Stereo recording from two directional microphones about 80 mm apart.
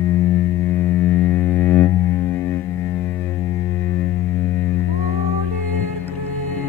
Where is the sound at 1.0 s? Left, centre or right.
Centre.